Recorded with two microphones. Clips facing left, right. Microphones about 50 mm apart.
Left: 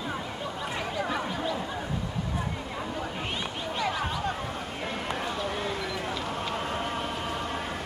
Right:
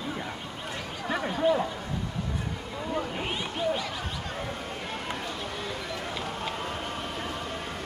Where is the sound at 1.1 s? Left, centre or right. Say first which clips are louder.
Right 5 dB; centre.